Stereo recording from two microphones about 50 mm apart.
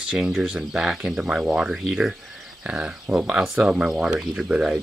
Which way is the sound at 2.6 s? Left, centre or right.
Right.